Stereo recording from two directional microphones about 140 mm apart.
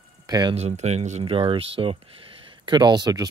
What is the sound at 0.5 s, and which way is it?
Speech, 50° right (ahead or behind).